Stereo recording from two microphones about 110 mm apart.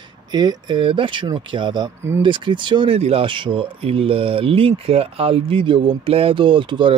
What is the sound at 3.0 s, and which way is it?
Speech, 60° right (ahead or behind).